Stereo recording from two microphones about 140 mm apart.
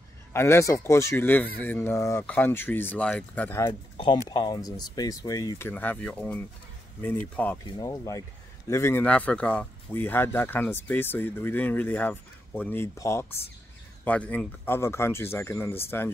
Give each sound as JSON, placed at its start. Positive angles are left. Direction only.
{"t": 0.3, "sound": "speech", "side_deg": 20}
{"t": 3.6, "sound": "speech", "side_deg": 35}
{"t": 5.7, "sound": "speech", "side_deg": 15}
{"t": 7.6, "sound": "speech", "side_deg": 25}